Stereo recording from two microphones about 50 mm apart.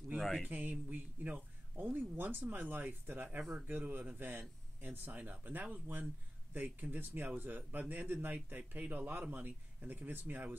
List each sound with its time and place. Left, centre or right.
0.5 s a man's voice: right